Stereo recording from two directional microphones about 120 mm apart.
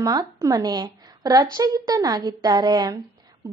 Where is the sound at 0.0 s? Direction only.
30° right (ahead or behind).